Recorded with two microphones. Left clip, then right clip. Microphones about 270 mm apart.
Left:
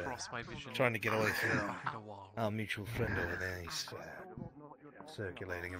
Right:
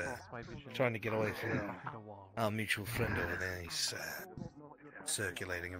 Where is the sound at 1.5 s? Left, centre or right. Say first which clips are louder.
Left 4 dB; left.